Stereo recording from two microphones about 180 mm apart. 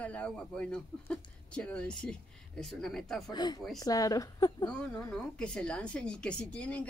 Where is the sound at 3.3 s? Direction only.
20° left (ahead or behind).